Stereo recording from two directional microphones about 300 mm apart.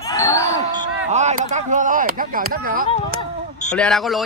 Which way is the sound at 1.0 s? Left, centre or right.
Right.